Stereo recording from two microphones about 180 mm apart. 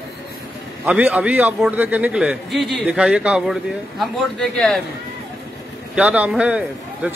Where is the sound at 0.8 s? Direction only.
5° right (ahead or behind).